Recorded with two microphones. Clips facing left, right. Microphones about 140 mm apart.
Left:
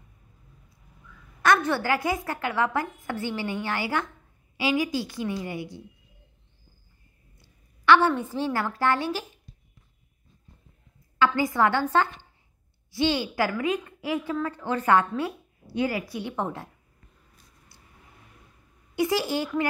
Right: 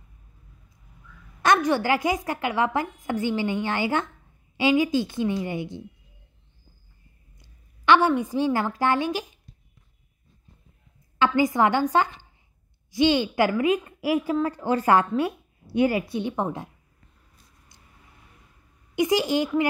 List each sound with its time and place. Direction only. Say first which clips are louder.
1.4 s a woman's voice: right 2 dB; 15° right (ahead or behind)
7.3 s a woman's voice: right 1 dB; 20° right (ahead or behind)
11.1 s a woman's voice: right 2 dB; 20° right (ahead or behind)
18.9 s a woman's voice: right 3 dB; 20° right (ahead or behind)